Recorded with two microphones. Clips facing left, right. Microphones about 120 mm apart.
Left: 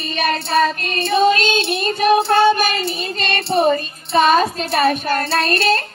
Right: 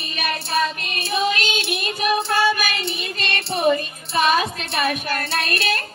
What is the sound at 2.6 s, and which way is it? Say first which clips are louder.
Music: left 6 dB; 35° left (ahead or behind).